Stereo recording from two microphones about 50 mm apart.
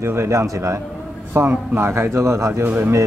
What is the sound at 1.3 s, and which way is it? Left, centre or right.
A man's voice, right.